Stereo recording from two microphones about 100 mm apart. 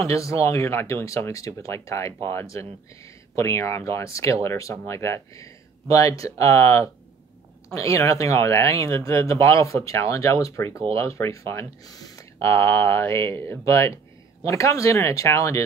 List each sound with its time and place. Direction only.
0.0 s speech: 35° left (ahead or behind)